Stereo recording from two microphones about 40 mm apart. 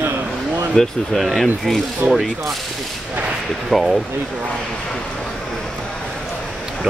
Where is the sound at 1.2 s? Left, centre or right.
Centre.